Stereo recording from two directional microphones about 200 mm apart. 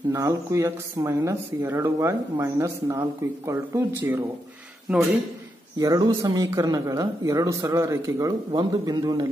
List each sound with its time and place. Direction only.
0.1 s speech: 15° right (ahead or behind)
5.8 s speech: 20° right (ahead or behind)